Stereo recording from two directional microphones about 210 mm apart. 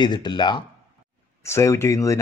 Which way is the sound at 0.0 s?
20° left (ahead or behind).